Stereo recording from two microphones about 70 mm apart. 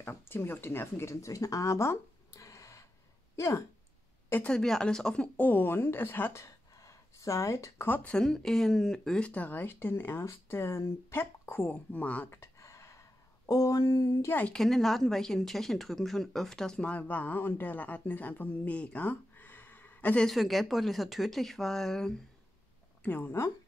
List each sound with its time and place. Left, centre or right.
0.0 s speech: left
4.5 s speech: centre
5.5 s speech: left
6.4 s a sound: left
8.2 s speech: centre
12.3 s a sound: left
13.5 s speech: left
14.5 s speech: centre
16.9 s speech: left
20.2 s speech: centre
23.0 s speech: left